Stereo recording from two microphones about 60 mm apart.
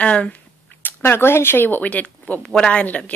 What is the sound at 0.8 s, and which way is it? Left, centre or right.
Speech, left.